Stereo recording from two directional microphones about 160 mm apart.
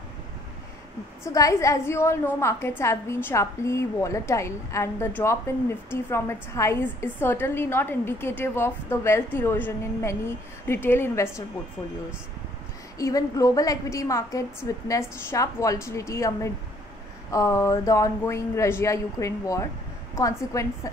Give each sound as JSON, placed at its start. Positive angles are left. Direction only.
{"t": 1.2, "sound": "a woman's voice", "side_deg": 20}
{"t": 12.9, "sound": "a woman's voice", "side_deg": 20}